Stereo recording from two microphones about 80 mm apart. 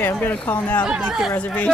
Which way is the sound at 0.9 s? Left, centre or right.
Centre.